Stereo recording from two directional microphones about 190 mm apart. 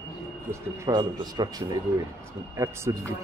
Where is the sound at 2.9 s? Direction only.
15° right (ahead or behind).